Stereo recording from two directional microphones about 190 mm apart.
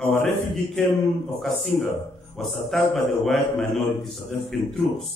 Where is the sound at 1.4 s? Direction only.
Centre (ahead or behind).